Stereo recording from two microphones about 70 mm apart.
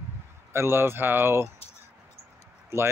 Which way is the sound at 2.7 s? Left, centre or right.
Right.